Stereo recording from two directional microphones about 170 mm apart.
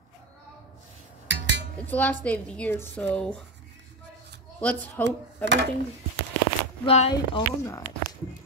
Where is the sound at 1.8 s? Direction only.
10° left (ahead or behind).